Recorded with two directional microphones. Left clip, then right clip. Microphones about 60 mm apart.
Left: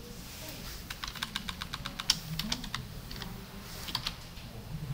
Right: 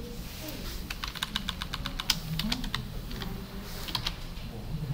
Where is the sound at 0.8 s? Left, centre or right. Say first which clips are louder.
Right 3 dB; centre.